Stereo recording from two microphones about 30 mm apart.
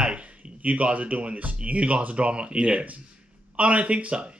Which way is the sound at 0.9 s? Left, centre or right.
Right.